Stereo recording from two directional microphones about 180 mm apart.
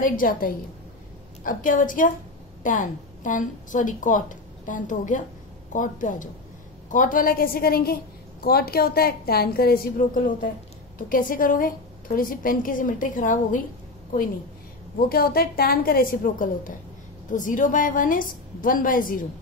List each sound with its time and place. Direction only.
0.0 s a woman's voice: 50° left (ahead or behind)
15.0 s a woman's voice: 55° left (ahead or behind)